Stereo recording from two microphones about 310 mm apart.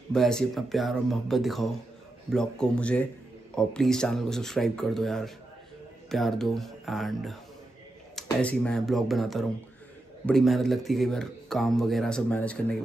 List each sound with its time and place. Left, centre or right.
0.1 s speech: centre